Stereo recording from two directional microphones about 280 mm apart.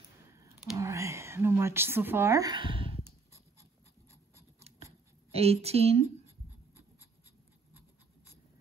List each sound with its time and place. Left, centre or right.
0.3 s a sound: centre
4.6 s scissors: right
5.3 s a woman's voice: right